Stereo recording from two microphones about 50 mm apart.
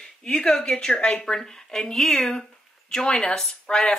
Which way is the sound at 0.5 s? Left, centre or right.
Centre.